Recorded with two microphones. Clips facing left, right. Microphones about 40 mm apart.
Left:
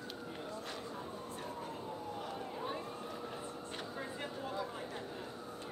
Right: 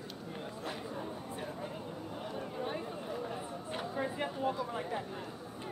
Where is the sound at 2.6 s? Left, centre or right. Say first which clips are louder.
Right 3 dB; centre.